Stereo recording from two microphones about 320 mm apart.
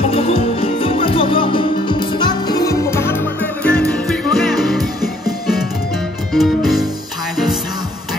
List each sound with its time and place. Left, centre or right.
0.0 s music: centre